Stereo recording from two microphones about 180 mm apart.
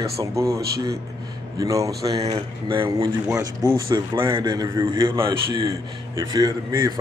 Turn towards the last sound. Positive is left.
turn(degrees=-20)  # may be behind; listen again after turning